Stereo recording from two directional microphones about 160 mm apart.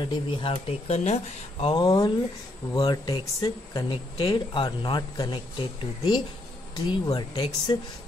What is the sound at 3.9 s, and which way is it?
A man's voice, 35° left (ahead or behind).